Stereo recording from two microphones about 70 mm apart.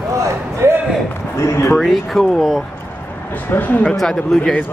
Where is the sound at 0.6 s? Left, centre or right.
Right.